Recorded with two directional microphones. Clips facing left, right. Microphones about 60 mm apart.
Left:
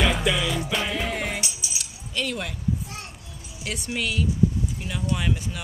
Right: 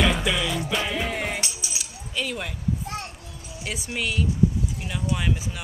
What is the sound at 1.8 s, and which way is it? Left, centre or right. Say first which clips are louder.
Keys jangling: left 1 dB; centre.